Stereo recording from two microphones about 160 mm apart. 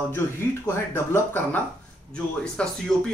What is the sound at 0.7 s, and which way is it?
Speech, 15° left (ahead or behind).